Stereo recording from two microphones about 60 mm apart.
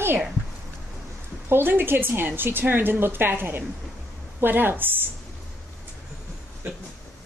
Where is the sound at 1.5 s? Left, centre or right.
Right.